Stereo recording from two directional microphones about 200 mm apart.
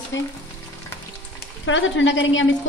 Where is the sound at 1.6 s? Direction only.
70° left (ahead or behind).